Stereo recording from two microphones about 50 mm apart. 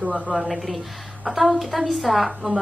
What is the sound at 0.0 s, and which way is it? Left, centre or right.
Speech, centre.